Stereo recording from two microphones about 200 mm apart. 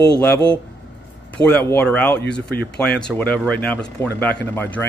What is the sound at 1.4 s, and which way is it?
Speech, 10° left (ahead or behind).